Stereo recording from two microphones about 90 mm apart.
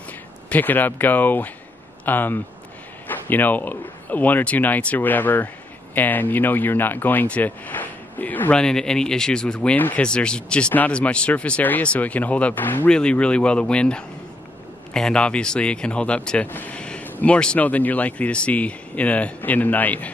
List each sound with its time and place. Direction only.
0.5 s speech: 20° left (ahead or behind)
12.9 s speech: 10° left (ahead or behind)